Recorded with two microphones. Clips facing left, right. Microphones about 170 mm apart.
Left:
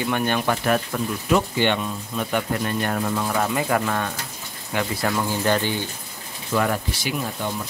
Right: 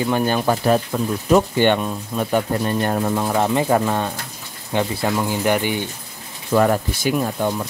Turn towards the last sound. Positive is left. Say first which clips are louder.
# right 7 dB
turn(degrees=-50)  # may be behind; listen again after turning